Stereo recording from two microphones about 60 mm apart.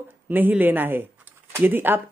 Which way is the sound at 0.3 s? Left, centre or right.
Right.